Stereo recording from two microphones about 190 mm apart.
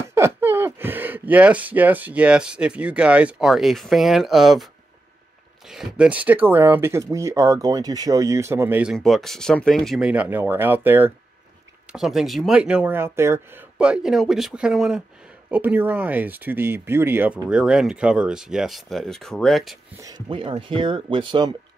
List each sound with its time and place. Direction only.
0.1 s speech: 15° right (ahead or behind)
5.7 s speech: 5° right (ahead or behind)
8.9 s speech: centre (ahead or behind)
20.2 s speech: 25° right (ahead or behind)